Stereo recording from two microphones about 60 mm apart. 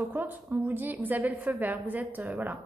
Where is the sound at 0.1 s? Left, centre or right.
Right.